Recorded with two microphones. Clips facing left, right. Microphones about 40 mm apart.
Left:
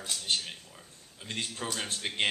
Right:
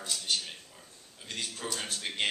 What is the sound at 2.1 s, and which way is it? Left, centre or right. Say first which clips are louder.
Speech: left 1 dB; centre.